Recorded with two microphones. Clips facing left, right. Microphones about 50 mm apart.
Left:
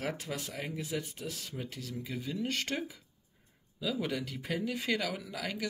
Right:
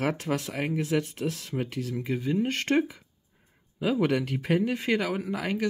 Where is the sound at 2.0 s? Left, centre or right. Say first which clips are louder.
Right 9 dB; right.